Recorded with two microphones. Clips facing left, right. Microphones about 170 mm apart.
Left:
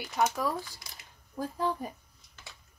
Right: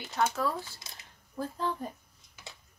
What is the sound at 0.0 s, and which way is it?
Speech, 10° left (ahead or behind).